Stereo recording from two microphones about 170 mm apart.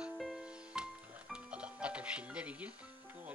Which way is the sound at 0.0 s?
5° right (ahead or behind).